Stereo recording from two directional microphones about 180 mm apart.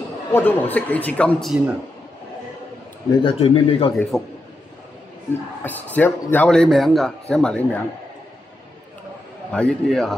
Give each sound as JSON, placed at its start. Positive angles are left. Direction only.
{"t": 0.3, "sound": "a man's voice", "side_deg": 10}
{"t": 3.2, "sound": "a man's voice", "side_deg": 30}
{"t": 4.1, "sound": "a man's voice", "side_deg": 0}
{"t": 5.6, "sound": "a man's voice", "side_deg": 10}
{"t": 9.5, "sound": "a man's voice", "side_deg": 5}